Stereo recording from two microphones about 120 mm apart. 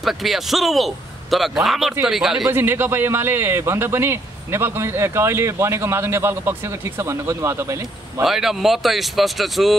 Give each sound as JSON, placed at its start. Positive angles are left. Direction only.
{"t": 0.0, "sound": "a man's voice", "side_deg": 0}
{"t": 2.5, "sound": "a man's voice", "side_deg": -20}
{"t": 8.2, "sound": "a man's voice", "side_deg": -5}